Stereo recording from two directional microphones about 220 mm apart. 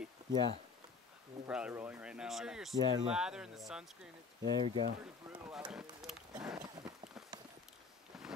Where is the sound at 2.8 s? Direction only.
20° right (ahead or behind).